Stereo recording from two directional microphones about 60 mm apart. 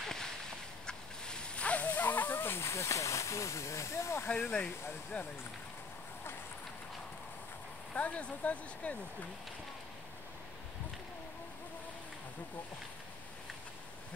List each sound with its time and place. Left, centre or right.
0.0 s a sound: centre; by 4.3 s left
4.3 s speech: left
7.9 s speech: left